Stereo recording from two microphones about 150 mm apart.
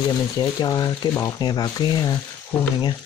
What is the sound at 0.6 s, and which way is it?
Speech, 25° left (ahead or behind).